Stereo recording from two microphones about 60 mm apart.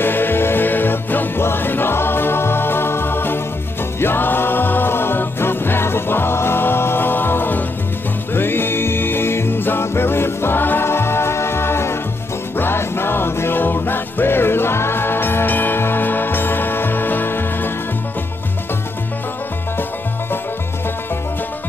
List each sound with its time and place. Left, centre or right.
0.0 s music: left